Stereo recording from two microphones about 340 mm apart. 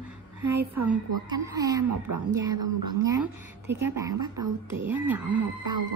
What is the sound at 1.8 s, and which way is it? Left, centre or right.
Speech, right.